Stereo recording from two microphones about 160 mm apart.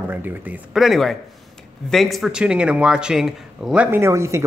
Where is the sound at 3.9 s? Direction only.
15° right (ahead or behind).